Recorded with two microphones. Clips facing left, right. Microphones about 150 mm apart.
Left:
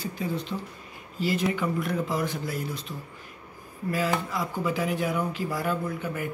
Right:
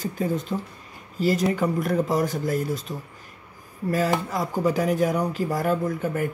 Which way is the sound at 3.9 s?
40° right (ahead or behind).